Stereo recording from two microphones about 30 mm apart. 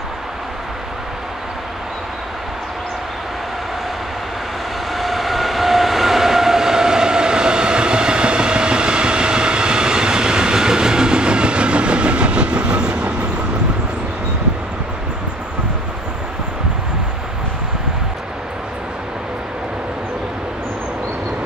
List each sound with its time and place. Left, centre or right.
4.9 s train: centre; by 13.1 s right